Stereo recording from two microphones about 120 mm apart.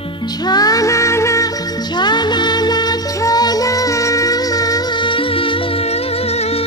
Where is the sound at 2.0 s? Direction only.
35° left (ahead or behind).